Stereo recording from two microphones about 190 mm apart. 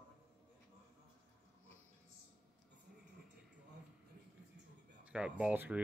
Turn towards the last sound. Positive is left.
turn(degrees=-10)  # may be behind; listen again after turning